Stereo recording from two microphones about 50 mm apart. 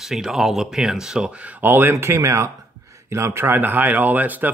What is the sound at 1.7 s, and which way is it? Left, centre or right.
Speech, right.